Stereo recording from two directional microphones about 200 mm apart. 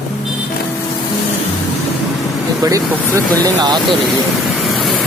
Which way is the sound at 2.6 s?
15° right (ahead or behind).